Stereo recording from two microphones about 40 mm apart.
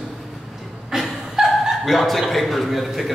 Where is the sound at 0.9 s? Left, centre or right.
Centre.